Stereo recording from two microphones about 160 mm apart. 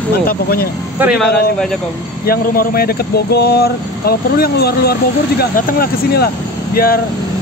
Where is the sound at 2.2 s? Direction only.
70° left (ahead or behind).